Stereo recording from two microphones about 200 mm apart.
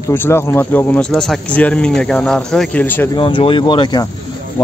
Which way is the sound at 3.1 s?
25° left (ahead or behind).